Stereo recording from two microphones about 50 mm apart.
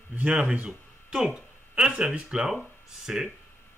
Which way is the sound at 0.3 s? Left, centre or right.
Centre.